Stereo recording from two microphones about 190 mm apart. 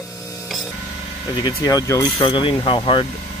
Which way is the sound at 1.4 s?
20° left (ahead or behind).